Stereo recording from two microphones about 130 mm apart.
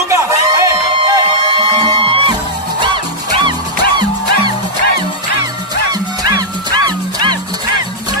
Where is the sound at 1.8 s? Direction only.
40° right (ahead or behind).